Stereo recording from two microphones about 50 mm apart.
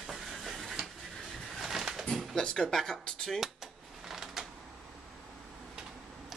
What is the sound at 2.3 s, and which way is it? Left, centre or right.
Speech, centre.